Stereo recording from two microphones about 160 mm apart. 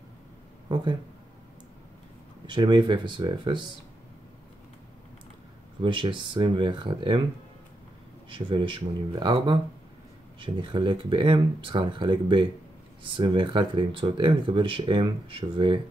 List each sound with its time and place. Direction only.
2.4 s speech: 30° right (ahead or behind)
5.8 s speech: 30° right (ahead or behind)
8.3 s speech: 30° right (ahead or behind)